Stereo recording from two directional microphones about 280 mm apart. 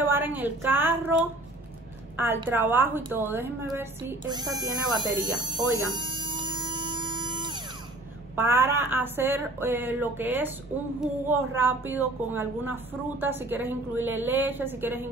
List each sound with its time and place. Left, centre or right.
0.0 s speech: centre
5.4 s music: centre
8.4 s speech: centre